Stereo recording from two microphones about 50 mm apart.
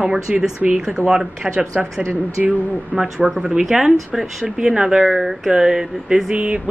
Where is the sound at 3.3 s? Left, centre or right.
Centre.